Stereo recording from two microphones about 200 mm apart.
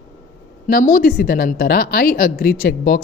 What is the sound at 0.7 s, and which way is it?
Speech, 45° left (ahead or behind).